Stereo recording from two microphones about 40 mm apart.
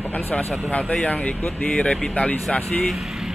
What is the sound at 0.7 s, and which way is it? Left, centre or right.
Speech, left.